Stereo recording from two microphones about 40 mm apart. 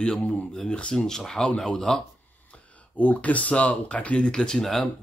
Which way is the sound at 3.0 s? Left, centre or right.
Left.